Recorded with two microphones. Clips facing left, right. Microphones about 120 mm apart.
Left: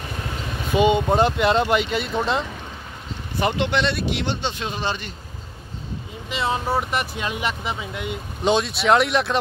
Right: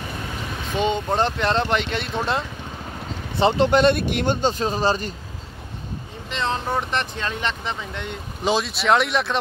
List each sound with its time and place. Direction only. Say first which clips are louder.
0.7 s speech: left 4 dB; 10° left (ahead or behind)
3.3 s speech: right 4 dB; 25° right (ahead or behind)
3.6 s speech: right 5 dB; 45° right (ahead or behind)
6.3 s speech: left 1 dB; 10° left (ahead or behind)